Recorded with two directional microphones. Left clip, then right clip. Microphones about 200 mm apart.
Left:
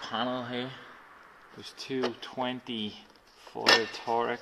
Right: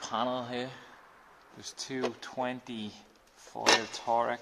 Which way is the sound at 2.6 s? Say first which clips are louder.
Left 6 dB; 35° right (ahead or behind).